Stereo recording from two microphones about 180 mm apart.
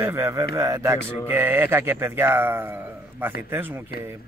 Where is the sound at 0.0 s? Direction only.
15° right (ahead or behind).